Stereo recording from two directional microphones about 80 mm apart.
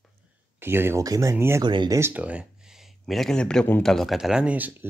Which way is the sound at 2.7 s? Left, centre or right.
Centre.